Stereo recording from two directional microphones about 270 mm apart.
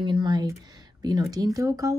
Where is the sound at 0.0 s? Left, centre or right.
Centre.